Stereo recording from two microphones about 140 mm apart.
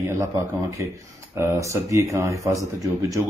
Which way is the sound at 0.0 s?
20° right (ahead or behind).